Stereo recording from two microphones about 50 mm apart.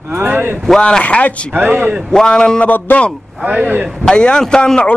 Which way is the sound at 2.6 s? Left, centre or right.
Left.